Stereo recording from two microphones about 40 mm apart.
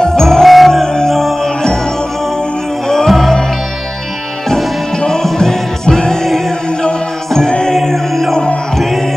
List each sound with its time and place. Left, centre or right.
0.0 s music: centre
2.9 s music: centre
4.9 s music: centre